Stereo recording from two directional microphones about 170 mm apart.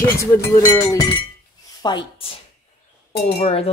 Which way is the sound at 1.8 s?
25° left (ahead or behind).